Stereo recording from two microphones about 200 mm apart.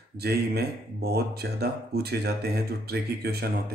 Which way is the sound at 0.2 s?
50° right (ahead or behind).